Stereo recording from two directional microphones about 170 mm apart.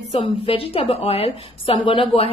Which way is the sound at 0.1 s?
35° left (ahead or behind).